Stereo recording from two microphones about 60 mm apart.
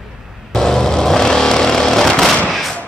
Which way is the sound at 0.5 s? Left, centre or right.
Centre.